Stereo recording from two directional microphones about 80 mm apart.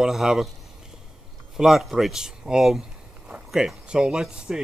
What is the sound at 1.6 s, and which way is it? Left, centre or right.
Speech, centre.